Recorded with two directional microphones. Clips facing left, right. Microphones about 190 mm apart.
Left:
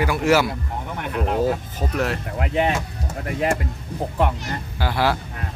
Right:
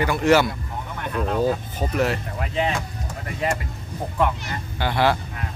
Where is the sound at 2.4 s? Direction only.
55° left (ahead or behind).